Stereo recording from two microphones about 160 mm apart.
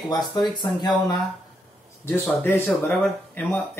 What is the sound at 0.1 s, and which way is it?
Speech, 25° left (ahead or behind).